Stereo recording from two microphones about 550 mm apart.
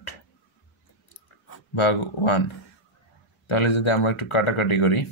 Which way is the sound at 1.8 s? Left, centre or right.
Left.